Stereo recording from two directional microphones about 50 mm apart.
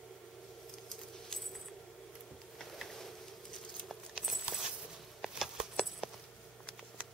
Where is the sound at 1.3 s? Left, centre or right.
Centre.